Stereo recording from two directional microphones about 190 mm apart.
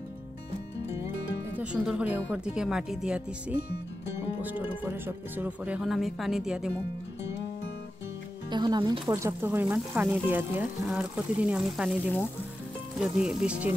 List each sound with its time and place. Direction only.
1.6 s speech: 5° right (ahead or behind)
8.5 s speech: 20° right (ahead or behind); by 13.7 s 5° right (ahead or behind)